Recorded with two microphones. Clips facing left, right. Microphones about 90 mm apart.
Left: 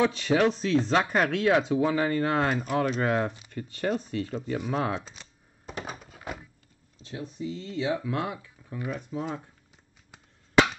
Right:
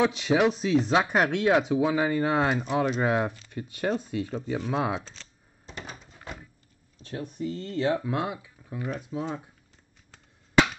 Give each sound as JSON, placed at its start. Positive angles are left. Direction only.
{"t": 0.0, "sound": "speech", "side_deg": -15}
{"t": 5.0, "sound": "speech", "side_deg": 10}
{"t": 5.7, "sound": "a sound", "side_deg": 50}
{"t": 7.0, "sound": "speech", "side_deg": -50}
{"t": 8.0, "sound": "speech", "side_deg": -20}
{"t": 9.1, "sound": "speech", "side_deg": -5}